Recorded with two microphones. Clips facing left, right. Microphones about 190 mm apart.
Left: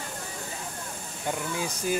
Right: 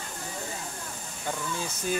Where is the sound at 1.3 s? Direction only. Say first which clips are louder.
Left 2 dB; 15° left (ahead or behind).